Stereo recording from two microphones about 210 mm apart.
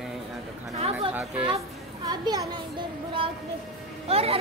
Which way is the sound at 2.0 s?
20° right (ahead or behind).